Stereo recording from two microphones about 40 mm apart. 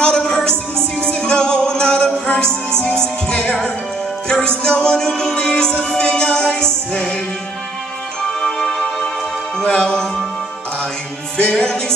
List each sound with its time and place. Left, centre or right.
0.0 s music: centre
8.3 s music: centre
11.5 s music: centre